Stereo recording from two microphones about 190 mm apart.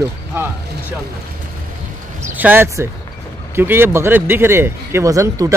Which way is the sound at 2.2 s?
10° right (ahead or behind).